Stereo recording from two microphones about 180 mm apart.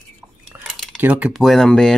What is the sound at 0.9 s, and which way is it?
Speech, 10° right (ahead or behind).